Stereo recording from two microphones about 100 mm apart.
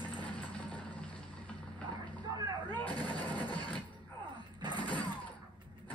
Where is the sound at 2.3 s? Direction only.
35° right (ahead or behind).